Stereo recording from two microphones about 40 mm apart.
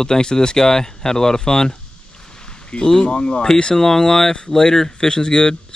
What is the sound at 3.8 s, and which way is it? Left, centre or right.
Speech, centre.